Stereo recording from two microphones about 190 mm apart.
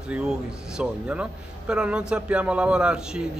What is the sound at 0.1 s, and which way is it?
A man's voice, 5° right (ahead or behind).